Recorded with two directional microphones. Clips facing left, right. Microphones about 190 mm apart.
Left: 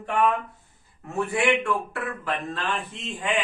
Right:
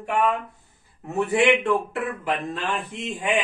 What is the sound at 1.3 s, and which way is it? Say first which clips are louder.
A man's voice: right 4 dB; 20° right (ahead or behind).